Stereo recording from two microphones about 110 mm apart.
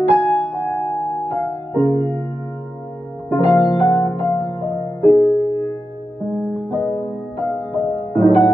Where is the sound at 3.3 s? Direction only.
15° left (ahead or behind).